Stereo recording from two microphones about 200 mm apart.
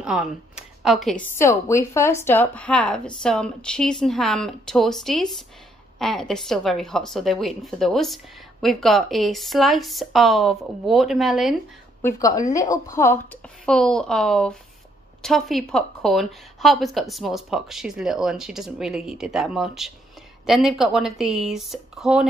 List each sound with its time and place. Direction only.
0.0 s speech: 5° right (ahead or behind)
1.3 s a woman's voice: 15° left (ahead or behind)
12.0 s a woman's voice: 15° left (ahead or behind); by 22.2 s centre (ahead or behind)